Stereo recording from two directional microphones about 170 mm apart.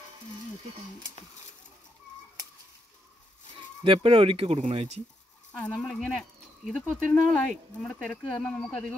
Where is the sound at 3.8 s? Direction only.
30° right (ahead or behind).